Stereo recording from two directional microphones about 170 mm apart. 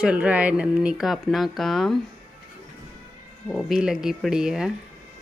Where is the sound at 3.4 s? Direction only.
Centre (ahead or behind).